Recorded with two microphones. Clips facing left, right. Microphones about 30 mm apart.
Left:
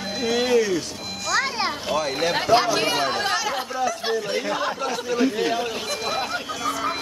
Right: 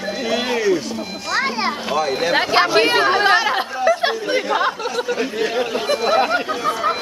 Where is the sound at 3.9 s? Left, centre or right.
Right.